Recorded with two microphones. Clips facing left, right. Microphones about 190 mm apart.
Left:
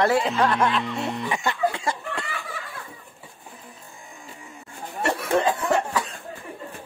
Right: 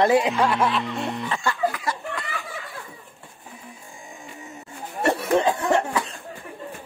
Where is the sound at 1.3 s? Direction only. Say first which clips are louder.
Left 1 dB; 20° left (ahead or behind).